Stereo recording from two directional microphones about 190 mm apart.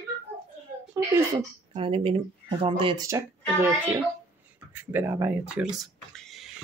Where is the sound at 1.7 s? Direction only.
30° right (ahead or behind).